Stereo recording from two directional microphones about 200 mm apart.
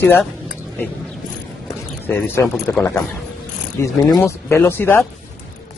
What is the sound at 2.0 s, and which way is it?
Speech, 10° left (ahead or behind).